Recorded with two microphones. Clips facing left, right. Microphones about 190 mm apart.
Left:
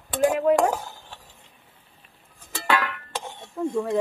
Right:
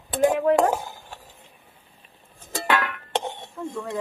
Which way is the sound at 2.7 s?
Centre (ahead or behind).